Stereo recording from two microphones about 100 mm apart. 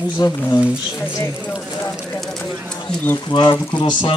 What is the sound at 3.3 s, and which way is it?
Speech, 50° left (ahead or behind).